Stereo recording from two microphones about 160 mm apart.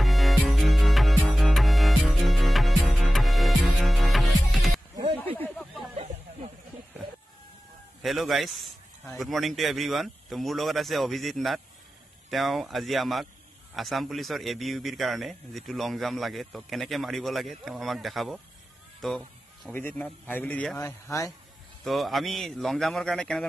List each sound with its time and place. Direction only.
0.0 s music: centre (ahead or behind)
5.4 s a sound: 5° left (ahead or behind)
5.9 s snake: 45° right (ahead or behind)
8.0 s speech: centre (ahead or behind)
18.9 s fowl: centre (ahead or behind)
19.7 s a man's voice: 10° left (ahead or behind)
21.8 s speech: centre (ahead or behind)